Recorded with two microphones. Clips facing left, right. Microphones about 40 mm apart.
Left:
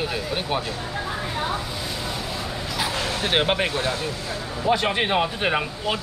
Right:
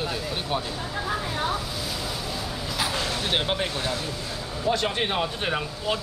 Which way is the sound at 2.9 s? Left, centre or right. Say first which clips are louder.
Left 5 dB; left.